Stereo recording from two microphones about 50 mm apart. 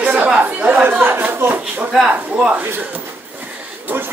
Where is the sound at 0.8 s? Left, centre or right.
Right.